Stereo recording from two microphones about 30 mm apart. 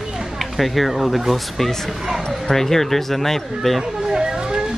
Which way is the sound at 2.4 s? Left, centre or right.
Centre.